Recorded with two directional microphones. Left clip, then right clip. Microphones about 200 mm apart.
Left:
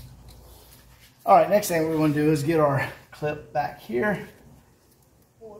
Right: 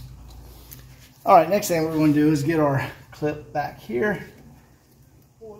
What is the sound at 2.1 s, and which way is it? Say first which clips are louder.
Speech: right 1 dB; 20° right (ahead or behind).